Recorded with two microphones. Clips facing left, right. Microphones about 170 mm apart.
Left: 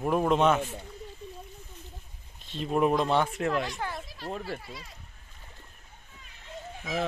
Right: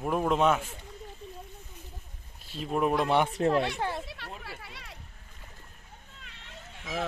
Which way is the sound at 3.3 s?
30° right (ahead or behind).